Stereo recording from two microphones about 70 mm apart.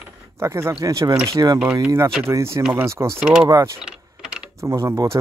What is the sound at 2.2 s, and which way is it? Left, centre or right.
Speech, right.